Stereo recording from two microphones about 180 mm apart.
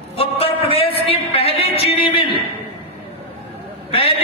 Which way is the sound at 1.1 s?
30° left (ahead or behind).